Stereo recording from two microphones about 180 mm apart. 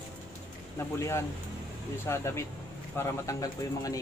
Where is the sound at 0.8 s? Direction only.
15° left (ahead or behind).